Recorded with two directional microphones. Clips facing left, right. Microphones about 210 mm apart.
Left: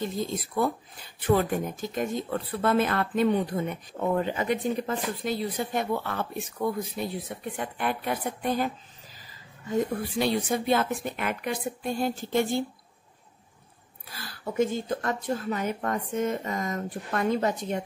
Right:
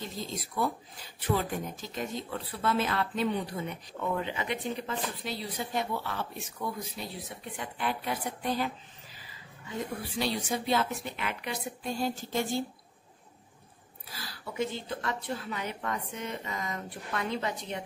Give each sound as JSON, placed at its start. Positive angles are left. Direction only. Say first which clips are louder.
{"t": 0.0, "sound": "speech", "louder": "left 7 dB", "side_deg": 50}
{"t": 14.2, "sound": "speech", "louder": "left 7 dB", "side_deg": 50}